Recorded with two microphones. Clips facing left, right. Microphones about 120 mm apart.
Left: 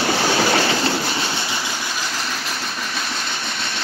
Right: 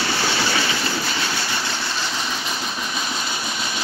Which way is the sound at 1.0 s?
20° left (ahead or behind).